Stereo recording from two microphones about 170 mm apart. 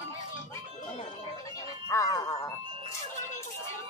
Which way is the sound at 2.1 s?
20° left (ahead or behind).